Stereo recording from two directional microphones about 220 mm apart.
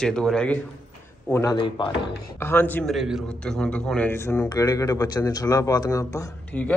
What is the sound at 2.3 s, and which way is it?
A man's voice, 10° left (ahead or behind).